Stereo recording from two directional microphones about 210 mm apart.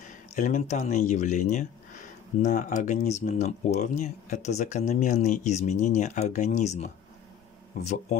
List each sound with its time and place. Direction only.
0.3 s speech: 35° left (ahead or behind)